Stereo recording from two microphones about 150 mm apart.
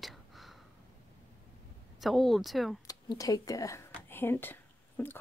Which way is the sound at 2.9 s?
25° left (ahead or behind).